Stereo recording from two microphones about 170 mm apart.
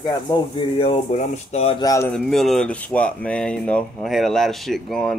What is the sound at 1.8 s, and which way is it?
Speech, 20° left (ahead or behind).